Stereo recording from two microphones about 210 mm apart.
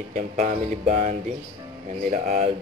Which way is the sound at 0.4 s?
35° right (ahead or behind).